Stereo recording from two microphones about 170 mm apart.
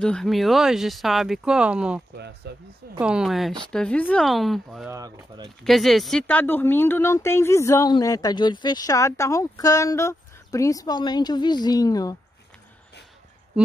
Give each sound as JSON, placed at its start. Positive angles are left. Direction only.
{"t": 0.0, "sound": "speech", "side_deg": 5}
{"t": 2.1, "sound": "speech", "side_deg": -75}
{"t": 3.0, "sound": "speech", "side_deg": -5}
{"t": 4.9, "sound": "speech", "side_deg": -20}
{"t": 5.6, "sound": "speech", "side_deg": 0}